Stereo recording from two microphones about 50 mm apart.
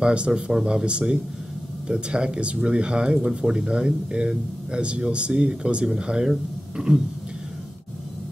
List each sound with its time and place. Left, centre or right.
0.0 s speech: right